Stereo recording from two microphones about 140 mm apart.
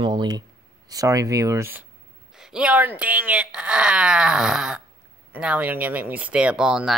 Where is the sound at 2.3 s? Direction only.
5° right (ahead or behind).